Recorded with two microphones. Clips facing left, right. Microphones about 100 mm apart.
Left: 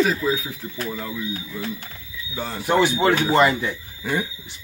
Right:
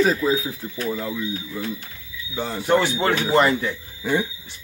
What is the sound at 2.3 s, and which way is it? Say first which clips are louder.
Speech: right 2 dB; 20° right (ahead or behind).